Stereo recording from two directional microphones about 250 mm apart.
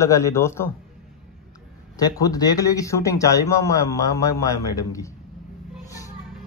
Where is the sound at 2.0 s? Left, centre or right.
Centre.